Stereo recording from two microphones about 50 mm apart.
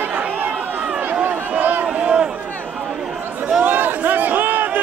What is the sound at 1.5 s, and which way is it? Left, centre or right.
Run, right.